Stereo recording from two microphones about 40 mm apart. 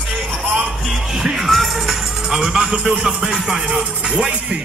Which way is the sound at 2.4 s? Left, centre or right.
Right.